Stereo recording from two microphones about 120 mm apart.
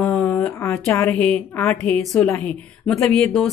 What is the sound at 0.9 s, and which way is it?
A woman's voice, 15° left (ahead or behind).